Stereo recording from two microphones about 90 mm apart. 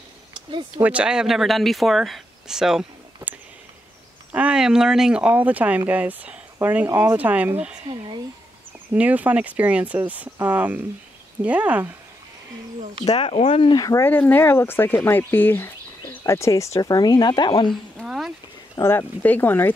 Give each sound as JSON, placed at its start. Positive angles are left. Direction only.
{"t": 0.8, "sound": "speech", "side_deg": -10}
{"t": 4.4, "sound": "speech", "side_deg": -10}
{"t": 7.9, "sound": "a sound", "side_deg": -60}
{"t": 8.9, "sound": "speech", "side_deg": -15}
{"t": 13.2, "sound": "speech", "side_deg": 85}
{"t": 13.7, "sound": "speech", "side_deg": 40}
{"t": 14.0, "sound": "speech", "side_deg": 20}
{"t": 16.8, "sound": "speech", "side_deg": 50}
{"t": 17.5, "sound": "speech", "side_deg": 80}
{"t": 18.0, "sound": "a sound", "side_deg": -5}
{"t": 18.8, "sound": "speech", "side_deg": 25}